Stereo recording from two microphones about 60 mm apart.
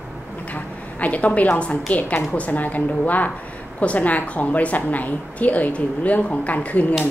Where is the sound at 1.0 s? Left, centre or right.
Left.